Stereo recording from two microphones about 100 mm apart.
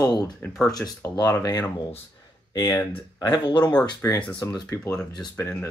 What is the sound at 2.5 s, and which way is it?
Speech, 40° left (ahead or behind).